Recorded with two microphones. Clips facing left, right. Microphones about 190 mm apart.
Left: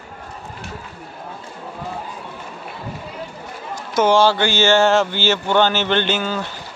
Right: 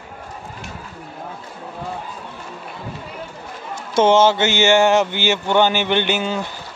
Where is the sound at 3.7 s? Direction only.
25° right (ahead or behind).